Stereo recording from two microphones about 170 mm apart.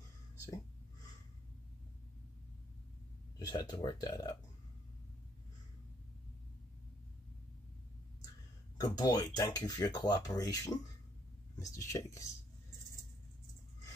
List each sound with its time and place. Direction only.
3.3 s speech: 25° left (ahead or behind)
8.7 s speech: 20° left (ahead or behind)